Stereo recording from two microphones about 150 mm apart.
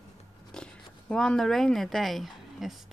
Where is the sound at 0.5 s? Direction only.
5° left (ahead or behind).